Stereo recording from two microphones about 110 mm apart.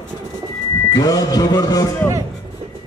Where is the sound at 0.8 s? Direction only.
35° left (ahead or behind).